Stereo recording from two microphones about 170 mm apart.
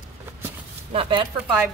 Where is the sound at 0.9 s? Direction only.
30° right (ahead or behind).